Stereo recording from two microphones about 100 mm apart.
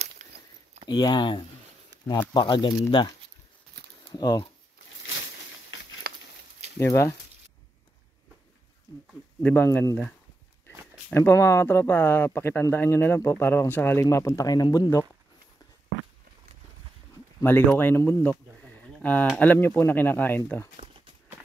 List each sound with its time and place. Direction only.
0.8 s speech: 45° left (ahead or behind)
4.1 s speech: 40° left (ahead or behind)
6.8 s speech: 30° left (ahead or behind)
9.4 s speech: 20° left (ahead or behind)
11.1 s speech: 25° left (ahead or behind)
17.4 s speech: 20° left (ahead or behind)
18.6 s a sound: 10° left (ahead or behind)
19.3 s speech: 15° left (ahead or behind)
20.7 s horse: 80° right